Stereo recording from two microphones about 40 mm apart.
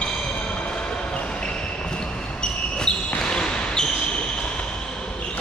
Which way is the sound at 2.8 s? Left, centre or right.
Left.